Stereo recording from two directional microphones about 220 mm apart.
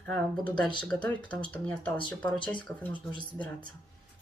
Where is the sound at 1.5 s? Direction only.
5° left (ahead or behind).